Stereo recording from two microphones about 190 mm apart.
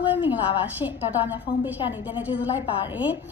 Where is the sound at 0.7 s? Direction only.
10° right (ahead or behind).